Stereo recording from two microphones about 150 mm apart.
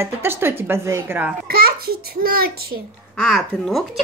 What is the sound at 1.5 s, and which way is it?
A child's voice, 85° right.